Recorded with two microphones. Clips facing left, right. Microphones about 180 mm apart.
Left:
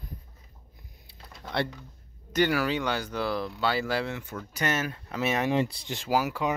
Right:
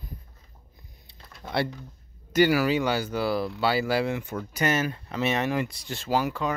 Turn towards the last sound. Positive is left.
turn(degrees=10)  # may be behind; listen again after turning